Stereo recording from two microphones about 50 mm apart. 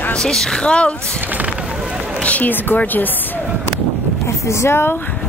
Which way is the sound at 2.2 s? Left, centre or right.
Left.